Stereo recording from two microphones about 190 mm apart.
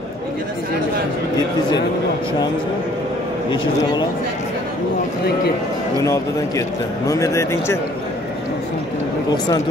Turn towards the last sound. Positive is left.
turn(degrees=15)  # may be behind; listen again after turning